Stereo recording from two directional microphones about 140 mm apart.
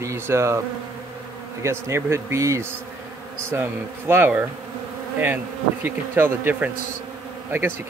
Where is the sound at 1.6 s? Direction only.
20° right (ahead or behind).